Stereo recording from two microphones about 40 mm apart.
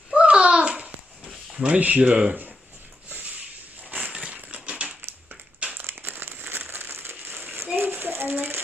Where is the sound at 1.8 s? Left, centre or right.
Right.